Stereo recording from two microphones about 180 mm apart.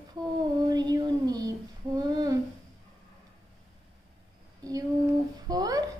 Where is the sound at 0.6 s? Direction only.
20° right (ahead or behind).